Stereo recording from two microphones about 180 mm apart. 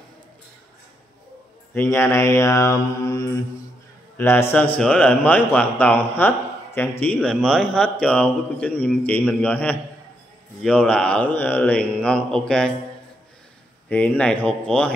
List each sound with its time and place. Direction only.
1.7 s a man's voice: 15° left (ahead or behind)
13.8 s a man's voice: 10° left (ahead or behind)